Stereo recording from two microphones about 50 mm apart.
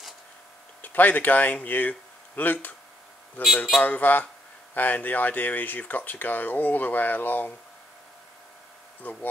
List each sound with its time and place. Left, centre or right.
0.8 s speech: left
9.0 s speech: left